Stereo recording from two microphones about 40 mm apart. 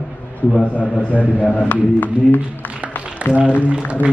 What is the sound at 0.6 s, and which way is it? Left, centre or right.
A man's voice, left.